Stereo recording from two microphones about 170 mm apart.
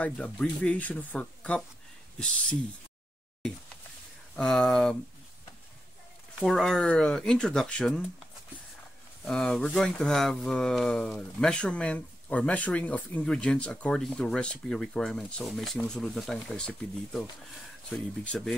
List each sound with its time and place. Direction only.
0.0 s speech: 5° left (ahead or behind)
4.4 s speech: 5° left (ahead or behind)
6.4 s speech: centre (ahead or behind)
9.2 s speech: 5° left (ahead or behind)